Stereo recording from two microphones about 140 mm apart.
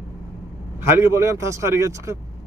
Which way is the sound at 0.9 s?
20° right (ahead or behind).